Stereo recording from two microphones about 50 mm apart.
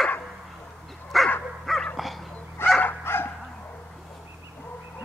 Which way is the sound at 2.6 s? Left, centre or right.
Left.